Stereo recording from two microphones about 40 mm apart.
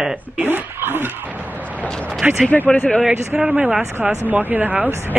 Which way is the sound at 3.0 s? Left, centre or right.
Right.